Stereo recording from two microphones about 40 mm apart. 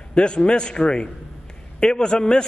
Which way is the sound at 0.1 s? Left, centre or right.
Left.